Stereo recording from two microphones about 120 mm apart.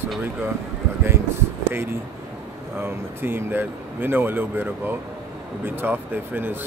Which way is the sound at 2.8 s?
20° right (ahead or behind).